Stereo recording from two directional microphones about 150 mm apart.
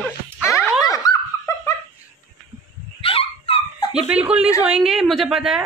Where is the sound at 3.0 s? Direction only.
40° left (ahead or behind).